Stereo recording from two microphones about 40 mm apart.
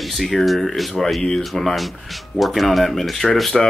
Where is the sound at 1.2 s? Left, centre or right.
Centre.